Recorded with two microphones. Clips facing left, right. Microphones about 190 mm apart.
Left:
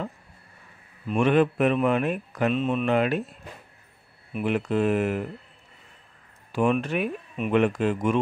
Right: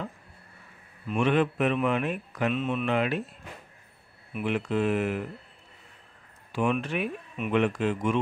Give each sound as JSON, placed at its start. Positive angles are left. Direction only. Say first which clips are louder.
{"t": 1.1, "sound": "speech", "louder": "left 4 dB", "side_deg": 45}
{"t": 4.4, "sound": "speech", "louder": "left 3 dB", "side_deg": 45}
{"t": 6.5, "sound": "speech", "louder": "left 4 dB", "side_deg": 45}